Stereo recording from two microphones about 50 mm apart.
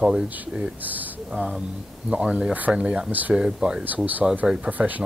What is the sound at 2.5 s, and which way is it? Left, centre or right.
Speech, right.